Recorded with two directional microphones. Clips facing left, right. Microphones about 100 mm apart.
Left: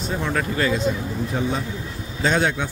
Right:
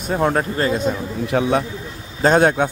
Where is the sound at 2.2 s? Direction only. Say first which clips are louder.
Right 7 dB; 50° right (ahead or behind).